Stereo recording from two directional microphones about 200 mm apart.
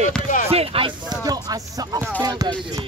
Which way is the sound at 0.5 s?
30° right (ahead or behind).